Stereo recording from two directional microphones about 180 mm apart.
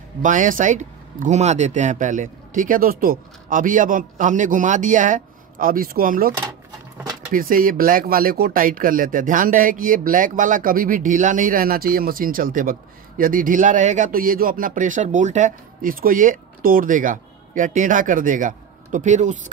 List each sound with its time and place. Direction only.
0.2 s speech: 45° right (ahead or behind)
7.3 s speech: 50° right (ahead or behind)